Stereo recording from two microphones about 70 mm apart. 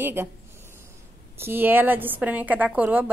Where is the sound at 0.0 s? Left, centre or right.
Right.